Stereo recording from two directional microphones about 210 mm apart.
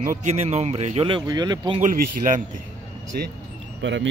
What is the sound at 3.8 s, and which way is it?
Speech, 60° right (ahead or behind).